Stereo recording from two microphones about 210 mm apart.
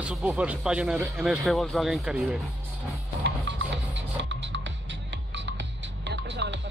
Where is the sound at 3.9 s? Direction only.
60° right (ahead or behind).